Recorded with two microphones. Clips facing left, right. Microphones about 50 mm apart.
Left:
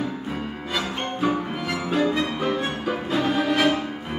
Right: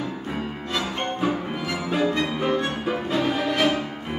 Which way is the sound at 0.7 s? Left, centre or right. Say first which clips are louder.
Even; centre.